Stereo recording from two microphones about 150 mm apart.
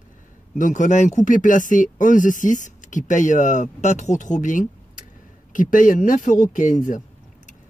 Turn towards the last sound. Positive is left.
turn(degrees=60)  # may be behind; listen again after turning